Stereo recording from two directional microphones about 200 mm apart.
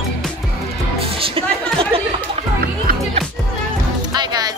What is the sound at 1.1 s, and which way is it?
Music, 30° right (ahead or behind).